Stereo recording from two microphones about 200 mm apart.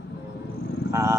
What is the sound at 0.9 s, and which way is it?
Speech, 15° right (ahead or behind).